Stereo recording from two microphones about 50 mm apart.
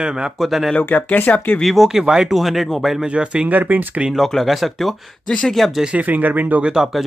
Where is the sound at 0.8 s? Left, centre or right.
Left.